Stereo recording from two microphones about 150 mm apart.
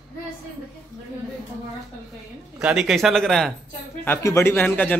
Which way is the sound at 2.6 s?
5° right (ahead or behind).